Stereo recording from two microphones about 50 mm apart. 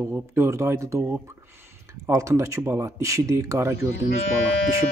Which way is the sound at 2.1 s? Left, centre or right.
Right.